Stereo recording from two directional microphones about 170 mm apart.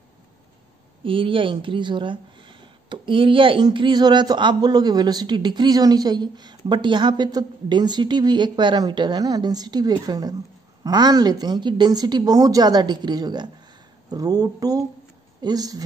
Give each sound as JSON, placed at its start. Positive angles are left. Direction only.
{"t": 1.0, "sound": "speech", "side_deg": -30}